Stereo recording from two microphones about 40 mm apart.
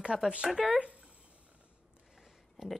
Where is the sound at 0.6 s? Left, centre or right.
Right.